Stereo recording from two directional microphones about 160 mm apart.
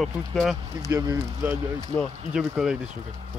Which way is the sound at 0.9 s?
20° right (ahead or behind).